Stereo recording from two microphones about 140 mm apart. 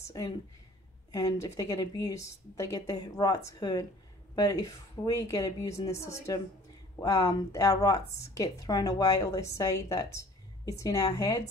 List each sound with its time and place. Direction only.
0.0 s a woman's voice: 25° left (ahead or behind)